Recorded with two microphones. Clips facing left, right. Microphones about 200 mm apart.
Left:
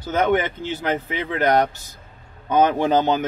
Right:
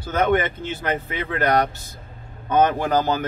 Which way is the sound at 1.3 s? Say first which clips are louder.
Left 2 dB; 15° left (ahead or behind).